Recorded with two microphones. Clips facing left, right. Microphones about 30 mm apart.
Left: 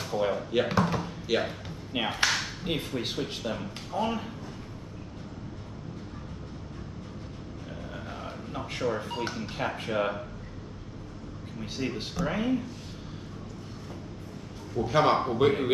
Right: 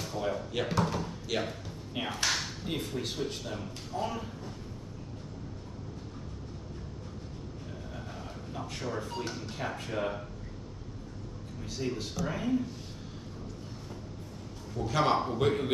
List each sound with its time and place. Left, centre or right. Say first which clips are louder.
0.1 s speech: left 6 dB; left
0.5 s speech: left 5 dB; centre
8.5 s speech: left 7 dB; left
11.6 s speech: left 2 dB; left
14.8 s a man's voice: left 4 dB; centre